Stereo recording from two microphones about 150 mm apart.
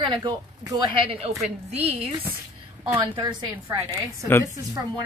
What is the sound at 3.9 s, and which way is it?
Speech, 15° left (ahead or behind).